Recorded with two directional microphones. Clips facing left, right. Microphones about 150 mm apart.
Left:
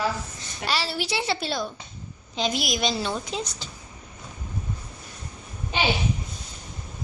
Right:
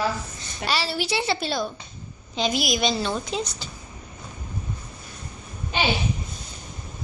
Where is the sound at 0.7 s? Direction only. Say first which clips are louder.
Right 2 dB; centre (ahead or behind).